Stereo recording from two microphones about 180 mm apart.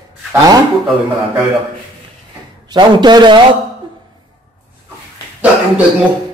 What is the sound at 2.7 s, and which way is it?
Speech, 25° right (ahead or behind).